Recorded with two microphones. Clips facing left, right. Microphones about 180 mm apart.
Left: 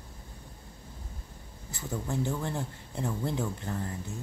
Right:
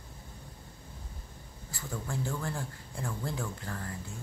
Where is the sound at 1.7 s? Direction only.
20° left (ahead or behind).